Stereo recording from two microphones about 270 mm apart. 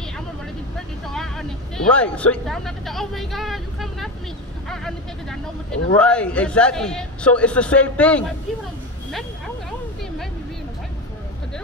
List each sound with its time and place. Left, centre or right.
1.0 s speech: centre